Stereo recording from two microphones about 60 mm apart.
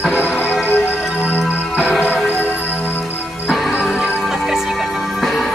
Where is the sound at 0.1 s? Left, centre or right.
Left.